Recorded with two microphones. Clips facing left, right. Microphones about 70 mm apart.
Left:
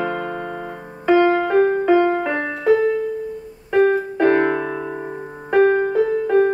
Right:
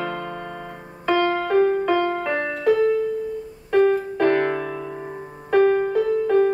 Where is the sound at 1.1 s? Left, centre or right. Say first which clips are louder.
Left 5 dB; centre.